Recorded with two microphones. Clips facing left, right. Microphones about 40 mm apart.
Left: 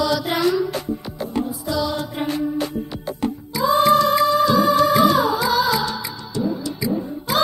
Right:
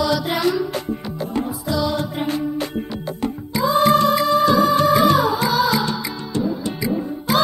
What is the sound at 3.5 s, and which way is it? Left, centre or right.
Music, right.